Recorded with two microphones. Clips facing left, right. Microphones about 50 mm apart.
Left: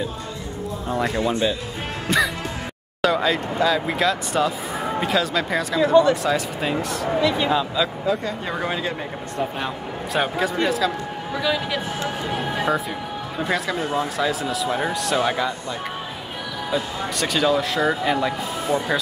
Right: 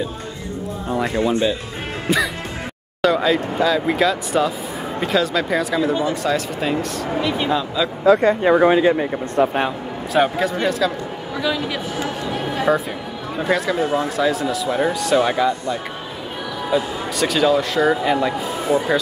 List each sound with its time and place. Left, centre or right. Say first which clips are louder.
0.8 s speech: right 2 dB; centre
2.0 s music: right 1 dB; centre
3.0 s speech: right 3 dB; centre
8.2 s speech: right 12 dB; right
8.5 s speech: right 11 dB; right
10.1 s speech: right 4 dB; centre